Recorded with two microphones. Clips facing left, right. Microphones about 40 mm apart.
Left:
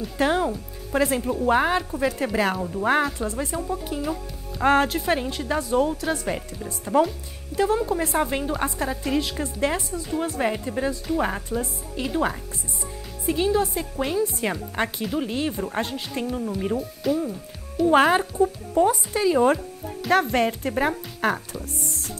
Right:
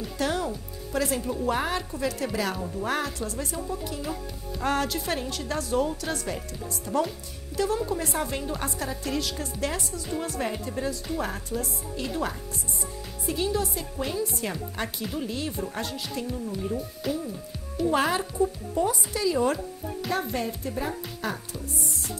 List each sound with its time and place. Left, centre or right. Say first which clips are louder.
0.2 s a woman's voice: left 6 dB; left; by 6.2 s centre
6.2 s speech: left 4 dB; left
7.5 s a woman's voice: left 5 dB; left
17.0 s speech: left 6 dB; centre
17.8 s speech: left 7 dB; left
18.2 s speech: left 4 dB; left
20.1 s speech: left 9 dB; left